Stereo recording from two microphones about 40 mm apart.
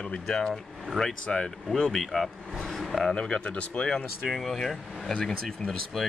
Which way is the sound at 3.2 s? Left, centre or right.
Left.